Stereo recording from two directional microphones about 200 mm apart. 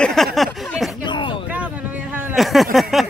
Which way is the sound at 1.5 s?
5° right (ahead or behind).